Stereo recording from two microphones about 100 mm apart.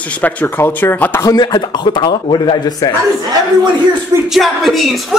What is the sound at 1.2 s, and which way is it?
Speech, 40° left (ahead or behind).